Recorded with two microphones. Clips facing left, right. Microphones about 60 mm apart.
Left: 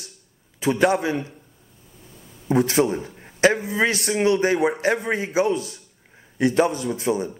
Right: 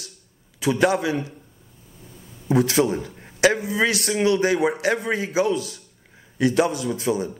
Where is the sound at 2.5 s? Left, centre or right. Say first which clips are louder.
Even; left.